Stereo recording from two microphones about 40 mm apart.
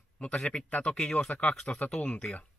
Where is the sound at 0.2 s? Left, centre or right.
Left.